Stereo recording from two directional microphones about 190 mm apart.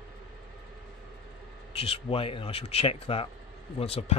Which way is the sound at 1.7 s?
30° left (ahead or behind).